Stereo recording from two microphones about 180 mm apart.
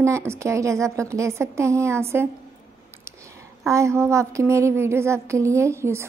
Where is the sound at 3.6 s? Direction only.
15° right (ahead or behind).